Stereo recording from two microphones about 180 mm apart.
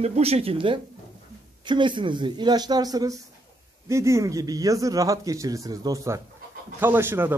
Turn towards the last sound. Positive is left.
turn(degrees=-10)  # may be behind; listen again after turning